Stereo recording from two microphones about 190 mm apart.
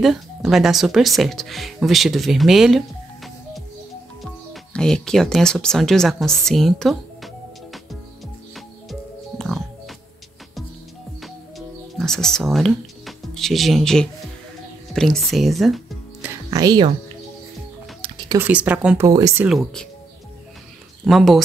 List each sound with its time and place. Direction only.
0.0 s speech: centre (ahead or behind)
4.7 s a woman's voice: 5° left (ahead or behind)
9.4 s music: centre (ahead or behind)
11.1 s music: centre (ahead or behind)
15.0 s speech: centre (ahead or behind)
16.4 s speech: 20° right (ahead or behind)
18.0 s a sound: 25° right (ahead or behind)
18.4 s speech: 10° right (ahead or behind)
19.0 s speech: 20° right (ahead or behind)
19.4 s a woman's voice: centre (ahead or behind)
21.0 s speech: centre (ahead or behind)